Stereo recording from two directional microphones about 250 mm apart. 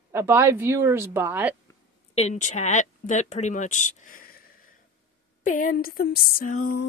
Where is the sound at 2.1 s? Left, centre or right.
Left.